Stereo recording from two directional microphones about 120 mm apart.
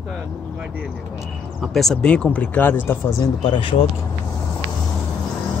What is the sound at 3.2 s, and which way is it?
Speech, 40° left (ahead or behind).